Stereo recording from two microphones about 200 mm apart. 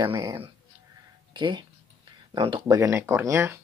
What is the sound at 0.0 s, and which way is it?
Speech, 15° right (ahead or behind).